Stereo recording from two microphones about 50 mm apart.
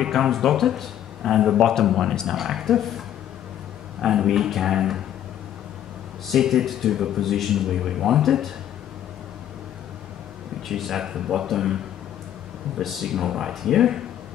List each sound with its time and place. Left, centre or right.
0.0 s a man's voice: centre
2.2 s a man's voice: centre
4.0 s speech: centre
6.4 s a man's voice: centre
10.7 s a man's voice: centre